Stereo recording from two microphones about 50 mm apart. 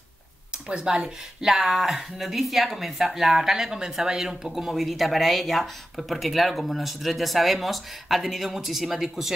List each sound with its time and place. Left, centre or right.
0.7 s speech: centre